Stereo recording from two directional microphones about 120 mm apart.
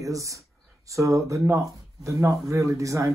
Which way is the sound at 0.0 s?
25° right (ahead or behind).